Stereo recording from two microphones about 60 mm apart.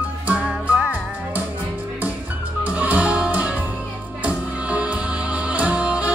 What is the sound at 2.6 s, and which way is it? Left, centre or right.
Music, right.